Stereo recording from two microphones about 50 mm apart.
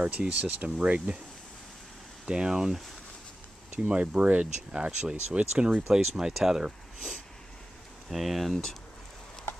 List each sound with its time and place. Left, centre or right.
0.0 s speech: right
2.2 s speech: centre
3.7 s speech: right; by 8.5 s centre